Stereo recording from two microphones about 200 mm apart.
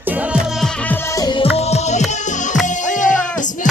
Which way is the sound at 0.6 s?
10° left (ahead or behind).